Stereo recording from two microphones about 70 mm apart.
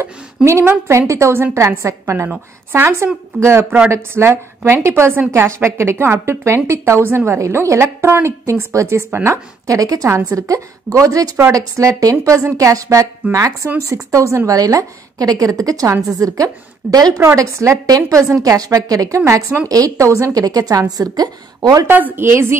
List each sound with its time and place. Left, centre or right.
0.5 s a woman's voice: right
17.2 s a woman's voice: right
20.3 s a woman's voice: right
21.8 s a woman's voice: right